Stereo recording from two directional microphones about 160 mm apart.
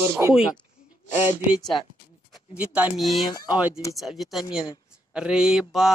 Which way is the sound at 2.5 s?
10° right (ahead or behind).